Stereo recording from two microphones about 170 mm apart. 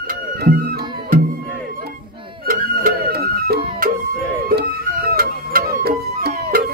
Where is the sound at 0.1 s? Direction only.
60° right (ahead or behind).